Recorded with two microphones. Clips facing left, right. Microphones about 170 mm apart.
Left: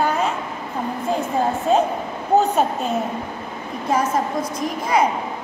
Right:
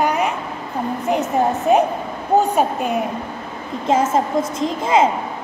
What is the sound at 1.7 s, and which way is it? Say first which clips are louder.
A woman's voice: right 2 dB; 15° right (ahead or behind).